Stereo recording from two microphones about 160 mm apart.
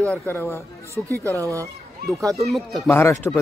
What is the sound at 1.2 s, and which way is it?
Speech, 20° right (ahead or behind).